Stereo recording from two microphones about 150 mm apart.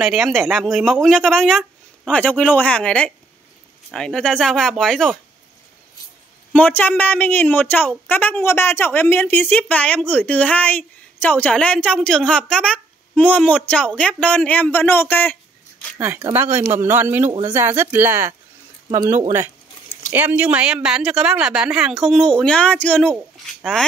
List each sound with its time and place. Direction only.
0.0 s a woman's voice: centre (ahead or behind)
6.5 s a woman's voice: 10° left (ahead or behind)
16.0 s speech: 15° right (ahead or behind)
20.1 s a woman's voice: 15° right (ahead or behind); by 23.9 s 5° left (ahead or behind)